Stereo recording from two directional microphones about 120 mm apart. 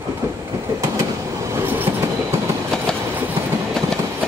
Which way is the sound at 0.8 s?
25° right (ahead or behind).